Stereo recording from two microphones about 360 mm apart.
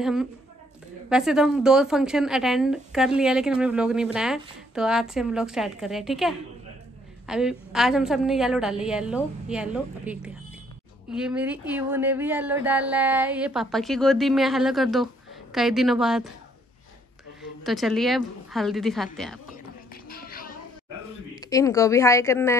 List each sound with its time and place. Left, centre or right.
0.0 s speech: centre
17.4 s a woman's voice: centre
20.1 s music: left
21.4 s a woman's voice: centre